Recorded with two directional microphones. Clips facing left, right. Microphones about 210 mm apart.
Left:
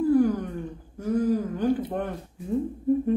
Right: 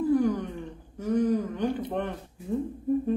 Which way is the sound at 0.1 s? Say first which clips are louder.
Left 3 dB; 5° left (ahead or behind).